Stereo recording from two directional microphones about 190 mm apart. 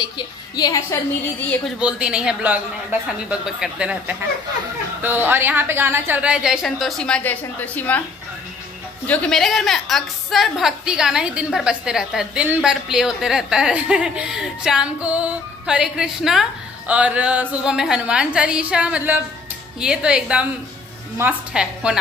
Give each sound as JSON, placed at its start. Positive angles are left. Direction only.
{"t": 0.6, "sound": "a woman's voice", "side_deg": 20}
{"t": 1.8, "sound": "a woman's voice", "side_deg": -5}
{"t": 5.0, "sound": "a woman's voice", "side_deg": -10}
{"t": 9.0, "sound": "a woman's voice", "side_deg": 5}